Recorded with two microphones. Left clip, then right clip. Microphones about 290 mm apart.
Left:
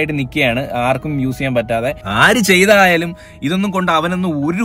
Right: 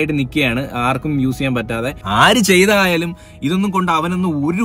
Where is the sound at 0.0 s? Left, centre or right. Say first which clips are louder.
Left 1 dB; left.